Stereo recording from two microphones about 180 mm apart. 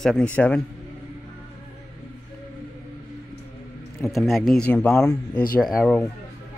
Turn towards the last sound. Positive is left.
turn(degrees=0)  # may be behind; listen again after turning